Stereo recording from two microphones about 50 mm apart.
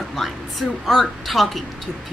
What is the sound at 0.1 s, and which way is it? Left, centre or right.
A woman's voice, centre.